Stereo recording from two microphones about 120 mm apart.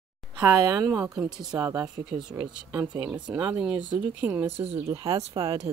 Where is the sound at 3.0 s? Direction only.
10° right (ahead or behind).